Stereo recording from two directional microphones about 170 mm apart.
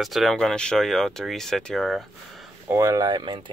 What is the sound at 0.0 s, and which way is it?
Speech, centre (ahead or behind).